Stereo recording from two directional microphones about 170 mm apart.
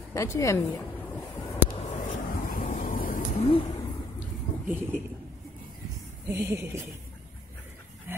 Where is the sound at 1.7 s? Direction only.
45° left (ahead or behind).